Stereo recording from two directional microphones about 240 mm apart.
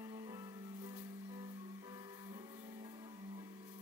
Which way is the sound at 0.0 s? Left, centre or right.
Centre.